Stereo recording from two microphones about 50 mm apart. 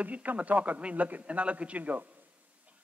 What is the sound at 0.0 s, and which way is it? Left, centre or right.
A man's voice, right.